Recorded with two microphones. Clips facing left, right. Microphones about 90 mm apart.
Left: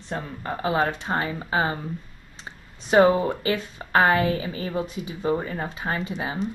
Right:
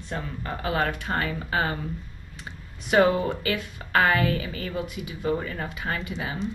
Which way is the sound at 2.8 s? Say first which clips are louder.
Left 3 dB; 30° left (ahead or behind).